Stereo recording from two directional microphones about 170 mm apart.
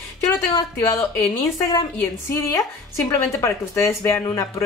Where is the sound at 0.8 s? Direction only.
10° left (ahead or behind).